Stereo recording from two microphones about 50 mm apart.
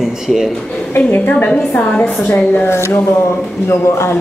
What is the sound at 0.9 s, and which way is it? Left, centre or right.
Speech, left.